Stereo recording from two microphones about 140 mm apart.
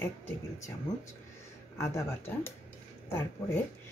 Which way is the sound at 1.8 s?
20° left (ahead or behind).